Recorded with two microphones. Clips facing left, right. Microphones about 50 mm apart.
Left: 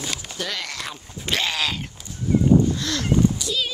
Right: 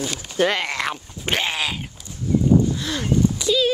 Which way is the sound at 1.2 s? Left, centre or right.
Right.